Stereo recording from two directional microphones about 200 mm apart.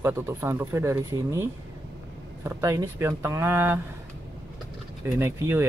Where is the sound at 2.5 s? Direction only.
15° right (ahead or behind).